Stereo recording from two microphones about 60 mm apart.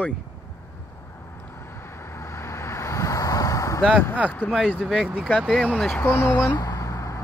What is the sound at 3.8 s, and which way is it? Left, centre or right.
Speech, centre.